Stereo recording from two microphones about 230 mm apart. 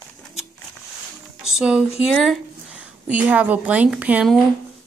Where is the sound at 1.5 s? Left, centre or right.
Centre.